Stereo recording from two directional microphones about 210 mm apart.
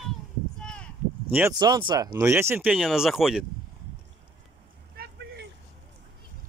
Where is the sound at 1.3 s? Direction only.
10° right (ahead or behind).